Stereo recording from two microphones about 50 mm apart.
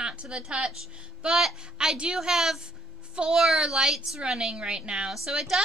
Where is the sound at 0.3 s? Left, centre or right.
Centre.